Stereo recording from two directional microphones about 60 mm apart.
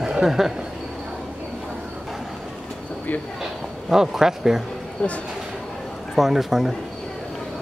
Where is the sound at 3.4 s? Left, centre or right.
Centre.